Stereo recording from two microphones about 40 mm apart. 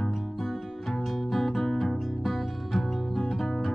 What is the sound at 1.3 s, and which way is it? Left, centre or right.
Music, centre.